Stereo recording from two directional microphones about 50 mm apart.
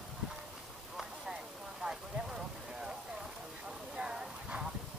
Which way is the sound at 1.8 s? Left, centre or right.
Centre.